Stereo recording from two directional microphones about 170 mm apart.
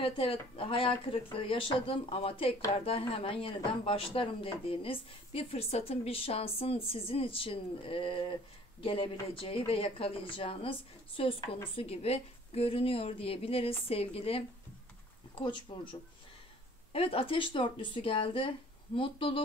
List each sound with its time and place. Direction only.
0.0 s speech: 30° left (ahead or behind)